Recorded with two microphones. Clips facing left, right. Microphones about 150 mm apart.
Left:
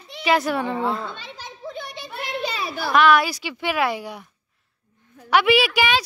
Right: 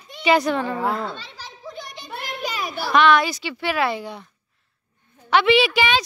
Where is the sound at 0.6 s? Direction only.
25° left (ahead or behind).